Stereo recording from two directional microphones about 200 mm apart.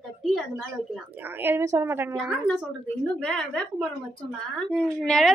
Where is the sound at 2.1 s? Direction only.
Centre (ahead or behind).